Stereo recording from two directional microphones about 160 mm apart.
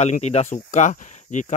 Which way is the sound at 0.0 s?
45° left (ahead or behind).